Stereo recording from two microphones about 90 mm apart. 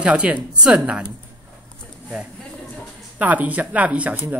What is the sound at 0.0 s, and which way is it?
Speech, 15° right (ahead or behind).